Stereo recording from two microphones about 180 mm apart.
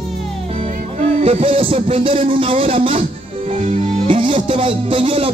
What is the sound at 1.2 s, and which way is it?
Music, 30° right (ahead or behind).